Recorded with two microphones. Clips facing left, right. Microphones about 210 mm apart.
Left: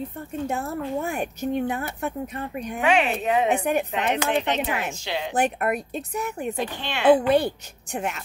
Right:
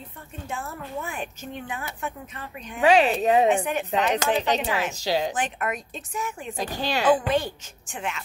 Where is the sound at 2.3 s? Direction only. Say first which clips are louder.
Left 7 dB; 50° left (ahead or behind).